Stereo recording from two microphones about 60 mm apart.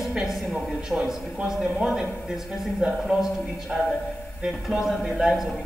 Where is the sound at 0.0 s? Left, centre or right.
Centre.